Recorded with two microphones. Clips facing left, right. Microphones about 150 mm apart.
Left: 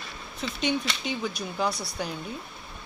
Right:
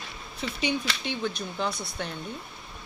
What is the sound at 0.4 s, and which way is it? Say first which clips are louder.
Speech: left 1 dB; 5° right (ahead or behind).